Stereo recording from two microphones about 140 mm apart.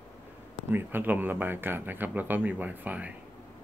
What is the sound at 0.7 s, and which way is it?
Speech, 15° right (ahead or behind).